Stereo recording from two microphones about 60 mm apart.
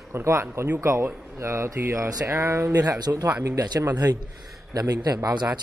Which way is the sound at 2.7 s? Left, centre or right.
Right.